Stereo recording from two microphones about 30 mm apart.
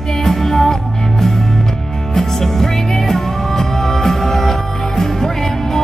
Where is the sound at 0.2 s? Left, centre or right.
Centre.